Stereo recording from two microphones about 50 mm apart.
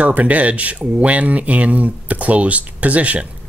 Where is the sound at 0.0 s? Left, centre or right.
Right.